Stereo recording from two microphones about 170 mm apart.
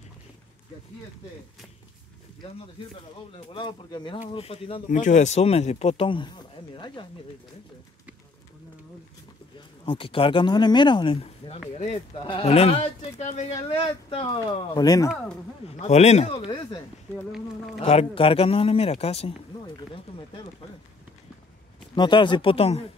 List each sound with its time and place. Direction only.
3.3 s speech: 25° left (ahead or behind)
4.8 s speech: 45° left (ahead or behind); by 6.3 s 30° left (ahead or behind)
9.8 s speech: 30° left (ahead or behind)
15.8 s speech: 40° left (ahead or behind)
17.8 s speech: 35° left (ahead or behind)
21.9 s speech: 25° left (ahead or behind)